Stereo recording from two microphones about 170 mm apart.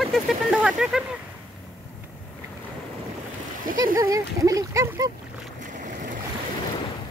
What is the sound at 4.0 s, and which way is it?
Speech, 20° right (ahead or behind).